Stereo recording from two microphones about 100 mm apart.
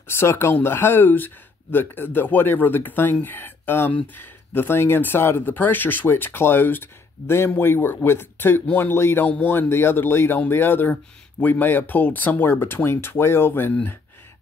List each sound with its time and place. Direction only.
0.1 s speech: 25° left (ahead or behind)